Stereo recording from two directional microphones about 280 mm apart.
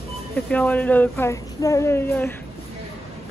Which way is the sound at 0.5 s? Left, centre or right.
Centre.